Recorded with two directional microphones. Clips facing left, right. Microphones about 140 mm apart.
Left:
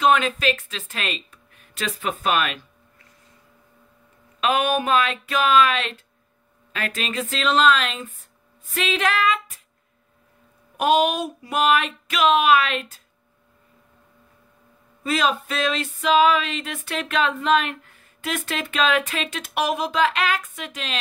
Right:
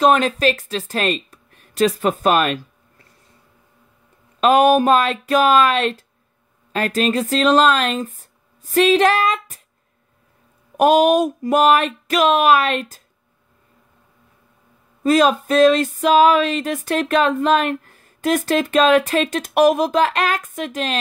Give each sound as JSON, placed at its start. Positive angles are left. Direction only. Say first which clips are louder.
{"t": 0.0, "sound": "speech", "louder": "right 4 dB", "side_deg": -40}
{"t": 4.4, "sound": "speech", "louder": "right 8 dB", "side_deg": -40}
{"t": 10.8, "sound": "speech", "louder": "right 6 dB", "side_deg": -45}
{"t": 15.0, "sound": "a sound", "louder": "right 8 dB", "side_deg": -45}